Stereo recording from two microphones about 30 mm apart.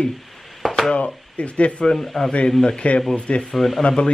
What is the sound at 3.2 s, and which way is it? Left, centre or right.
Speech, left.